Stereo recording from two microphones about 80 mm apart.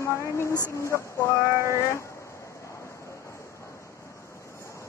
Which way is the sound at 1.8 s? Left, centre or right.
Left.